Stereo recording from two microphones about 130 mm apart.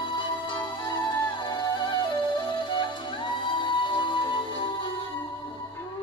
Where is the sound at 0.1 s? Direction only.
40° left (ahead or behind).